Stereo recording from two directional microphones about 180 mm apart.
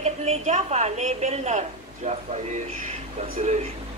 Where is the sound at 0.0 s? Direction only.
35° right (ahead or behind).